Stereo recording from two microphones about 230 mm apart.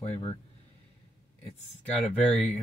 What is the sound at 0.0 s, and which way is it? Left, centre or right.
Speech, left.